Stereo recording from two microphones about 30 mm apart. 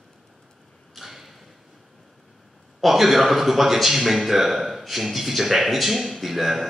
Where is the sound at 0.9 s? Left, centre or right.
Centre.